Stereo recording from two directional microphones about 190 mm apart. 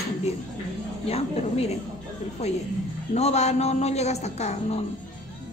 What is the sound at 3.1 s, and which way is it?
Speech, 35° left (ahead or behind).